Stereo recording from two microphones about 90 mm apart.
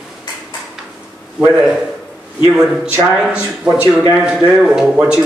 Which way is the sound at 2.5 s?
5° right (ahead or behind).